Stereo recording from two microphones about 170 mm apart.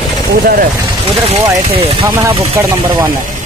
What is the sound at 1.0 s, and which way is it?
Speech, 35° right (ahead or behind).